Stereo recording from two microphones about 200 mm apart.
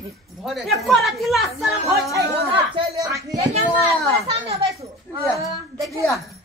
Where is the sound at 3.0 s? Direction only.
15° right (ahead or behind).